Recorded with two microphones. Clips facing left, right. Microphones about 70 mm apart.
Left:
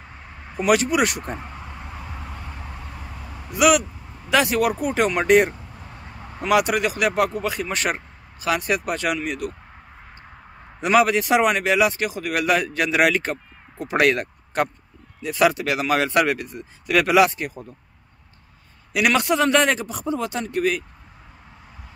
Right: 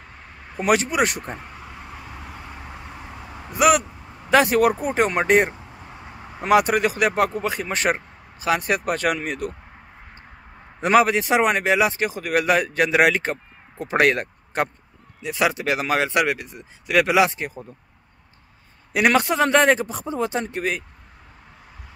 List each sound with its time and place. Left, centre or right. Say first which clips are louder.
0.6 s speech: left 1 dB; right
1.2 s speech: left 2 dB; centre
3.5 s speech: even; right
10.8 s speech: right 1 dB; right; by 15.6 s centre
15.6 s speech: even; right
16.1 s speech: left 1 dB; centre
18.9 s speech: right 1 dB; right